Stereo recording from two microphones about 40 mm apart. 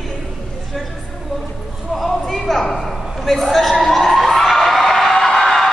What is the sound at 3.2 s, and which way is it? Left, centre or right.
Speech, centre.